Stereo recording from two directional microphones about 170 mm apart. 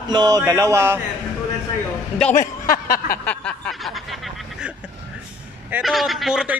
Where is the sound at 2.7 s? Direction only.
60° left (ahead or behind).